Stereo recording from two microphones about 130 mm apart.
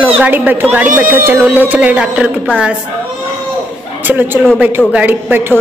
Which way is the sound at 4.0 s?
15° right (ahead or behind).